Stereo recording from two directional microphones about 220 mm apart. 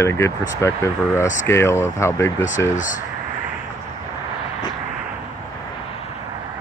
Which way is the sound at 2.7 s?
35° left (ahead or behind).